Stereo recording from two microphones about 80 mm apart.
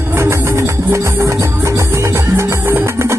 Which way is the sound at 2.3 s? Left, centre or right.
Right.